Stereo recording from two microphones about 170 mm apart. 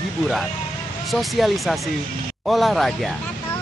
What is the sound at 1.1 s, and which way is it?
Speech, centre (ahead or behind).